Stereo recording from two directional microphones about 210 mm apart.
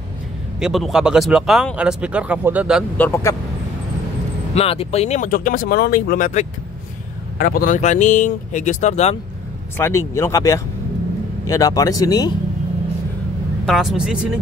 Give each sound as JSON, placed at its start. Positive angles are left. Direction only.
{"t": 0.6, "sound": "speech", "side_deg": 0}
{"t": 3.0, "sound": "speech", "side_deg": 10}
{"t": 4.6, "sound": "speech", "side_deg": 30}
{"t": 9.8, "sound": "speech", "side_deg": 10}
{"t": 13.7, "sound": "speech", "side_deg": 0}